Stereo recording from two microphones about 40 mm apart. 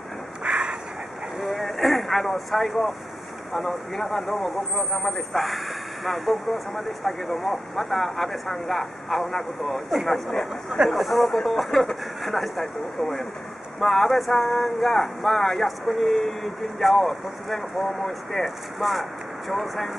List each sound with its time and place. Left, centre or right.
0.4 s a sound: right
1.5 s vehicle: centre
3.5 s speech: centre